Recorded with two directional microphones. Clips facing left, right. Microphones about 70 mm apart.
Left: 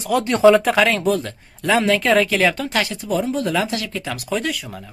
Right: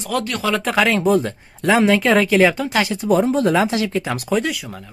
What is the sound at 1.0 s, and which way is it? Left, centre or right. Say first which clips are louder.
Speech: right 3 dB; centre.